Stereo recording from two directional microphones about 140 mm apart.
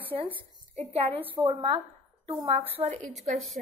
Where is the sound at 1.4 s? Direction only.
40° right (ahead or behind).